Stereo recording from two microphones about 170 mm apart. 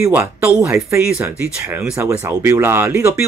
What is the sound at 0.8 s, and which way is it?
Speech, 15° right (ahead or behind).